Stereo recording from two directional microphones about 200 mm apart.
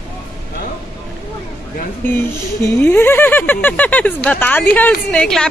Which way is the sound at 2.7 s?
10° left (ahead or behind).